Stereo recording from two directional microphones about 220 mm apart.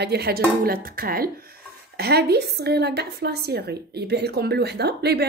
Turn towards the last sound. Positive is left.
turn(degrees=-45)  # may be behind; listen again after turning